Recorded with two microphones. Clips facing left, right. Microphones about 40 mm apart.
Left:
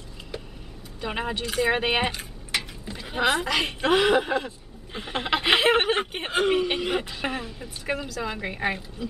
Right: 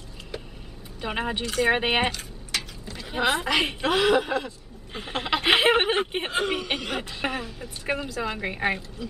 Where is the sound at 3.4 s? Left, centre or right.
Centre.